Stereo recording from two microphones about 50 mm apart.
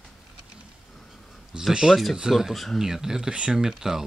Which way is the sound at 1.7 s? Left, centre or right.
Centre.